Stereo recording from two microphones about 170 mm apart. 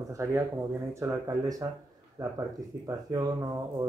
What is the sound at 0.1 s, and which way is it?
Speech, 15° right (ahead or behind).